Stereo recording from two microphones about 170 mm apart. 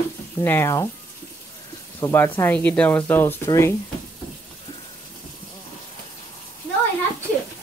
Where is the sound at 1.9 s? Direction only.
15° left (ahead or behind).